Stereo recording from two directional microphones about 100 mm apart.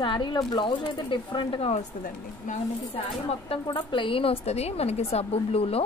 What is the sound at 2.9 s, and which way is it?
Speech, 70° left (ahead or behind).